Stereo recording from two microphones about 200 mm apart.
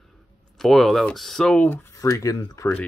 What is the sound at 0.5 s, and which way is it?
Speech, centre (ahead or behind).